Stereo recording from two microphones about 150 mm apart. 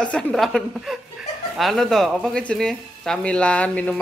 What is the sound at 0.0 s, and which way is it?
Speech, 5° left (ahead or behind).